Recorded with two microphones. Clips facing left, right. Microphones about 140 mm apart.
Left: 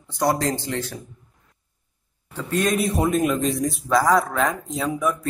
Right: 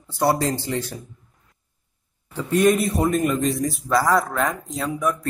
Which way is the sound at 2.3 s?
10° right (ahead or behind).